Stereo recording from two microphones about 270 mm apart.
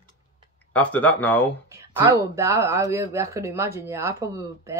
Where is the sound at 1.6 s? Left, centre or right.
Centre.